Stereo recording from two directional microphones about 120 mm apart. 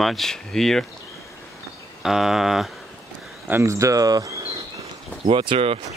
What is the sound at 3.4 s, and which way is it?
Speech, 20° right (ahead or behind).